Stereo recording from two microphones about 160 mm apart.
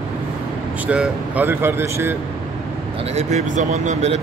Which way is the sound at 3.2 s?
45° right (ahead or behind).